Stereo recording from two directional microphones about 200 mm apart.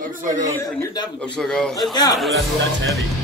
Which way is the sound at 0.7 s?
10° left (ahead or behind).